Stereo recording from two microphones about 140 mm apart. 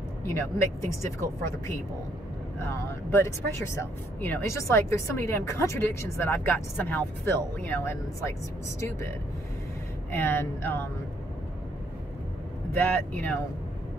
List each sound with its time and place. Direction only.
0.2 s speech: 20° left (ahead or behind)
2.6 s speech: 20° left (ahead or behind)
10.1 s speech: 15° left (ahead or behind)
12.7 s speech: 15° left (ahead or behind)